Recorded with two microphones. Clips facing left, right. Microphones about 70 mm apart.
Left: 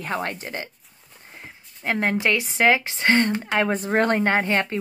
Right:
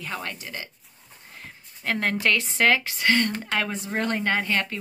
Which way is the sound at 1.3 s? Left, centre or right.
Centre.